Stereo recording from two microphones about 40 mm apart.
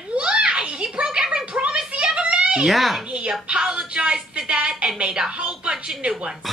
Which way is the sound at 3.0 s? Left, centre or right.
Right.